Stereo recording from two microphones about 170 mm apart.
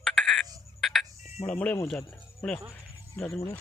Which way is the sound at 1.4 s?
10° left (ahead or behind).